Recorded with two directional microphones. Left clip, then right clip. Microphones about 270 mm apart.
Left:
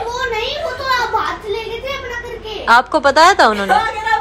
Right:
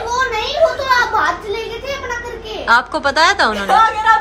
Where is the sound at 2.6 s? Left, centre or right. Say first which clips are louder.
Left 3 dB; centre.